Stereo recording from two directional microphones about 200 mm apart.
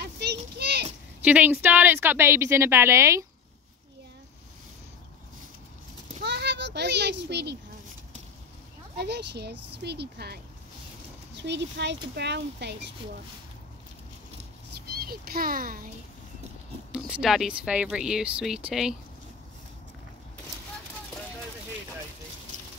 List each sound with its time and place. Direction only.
0.0 s a sound: 55° right (ahead or behind)
1.2 s a woman's voice: 10° right (ahead or behind)
6.2 s children playing: 55° right (ahead or behind)
8.9 s speech: 55° right (ahead or behind)
11.4 s speech: 60° right (ahead or behind)
14.9 s a child's voice: 50° right (ahead or behind)
16.9 s speech: 5° right (ahead or behind)